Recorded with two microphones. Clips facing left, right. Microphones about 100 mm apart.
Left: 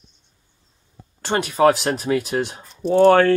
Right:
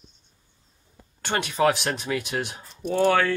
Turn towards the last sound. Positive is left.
turn(degrees=40)  # may be behind; listen again after turning